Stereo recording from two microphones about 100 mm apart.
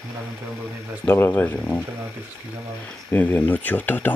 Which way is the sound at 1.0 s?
20° left (ahead or behind).